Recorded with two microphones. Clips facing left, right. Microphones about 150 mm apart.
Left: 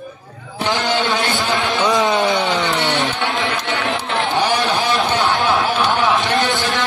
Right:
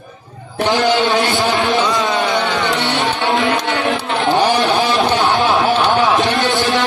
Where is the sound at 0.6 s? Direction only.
20° right (ahead or behind).